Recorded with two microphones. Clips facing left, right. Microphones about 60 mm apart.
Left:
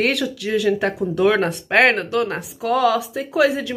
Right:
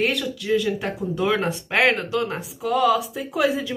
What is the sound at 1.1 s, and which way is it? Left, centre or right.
Speech, left.